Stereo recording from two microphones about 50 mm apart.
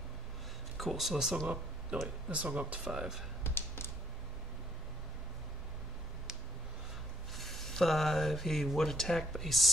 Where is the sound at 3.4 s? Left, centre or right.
Left.